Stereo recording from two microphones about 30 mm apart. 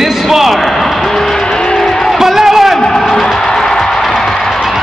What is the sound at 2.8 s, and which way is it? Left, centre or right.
Music, left.